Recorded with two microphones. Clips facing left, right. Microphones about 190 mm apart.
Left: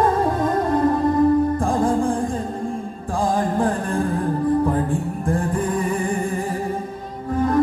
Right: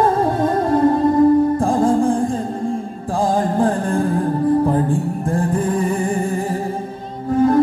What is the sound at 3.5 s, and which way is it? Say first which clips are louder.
Music: right 4 dB; 30° right (ahead or behind).